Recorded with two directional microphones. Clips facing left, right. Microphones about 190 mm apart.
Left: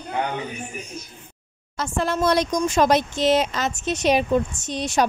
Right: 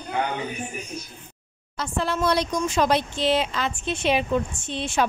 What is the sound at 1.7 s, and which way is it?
Speech, 45° left (ahead or behind).